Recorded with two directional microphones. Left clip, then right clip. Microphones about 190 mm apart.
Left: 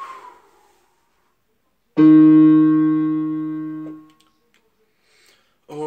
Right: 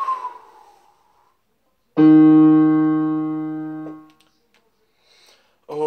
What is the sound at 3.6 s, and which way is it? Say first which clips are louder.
Keyboard: left 1 dB; 20° right (ahead or behind).